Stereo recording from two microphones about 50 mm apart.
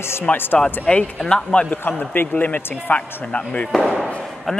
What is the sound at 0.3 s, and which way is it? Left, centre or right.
Speech, left.